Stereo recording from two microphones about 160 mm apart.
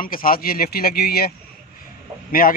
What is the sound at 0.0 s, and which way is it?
Speech, 60° left (ahead or behind).